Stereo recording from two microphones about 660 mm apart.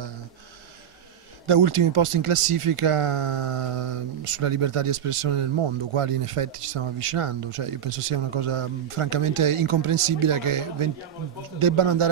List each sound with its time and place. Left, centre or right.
1.5 s speech: right